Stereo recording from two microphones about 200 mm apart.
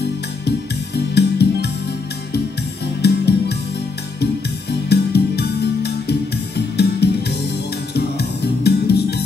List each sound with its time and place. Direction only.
1.1 s music: 55° left (ahead or behind)
3.0 s music: 55° left (ahead or behind)
4.8 s music: 55° left (ahead or behind)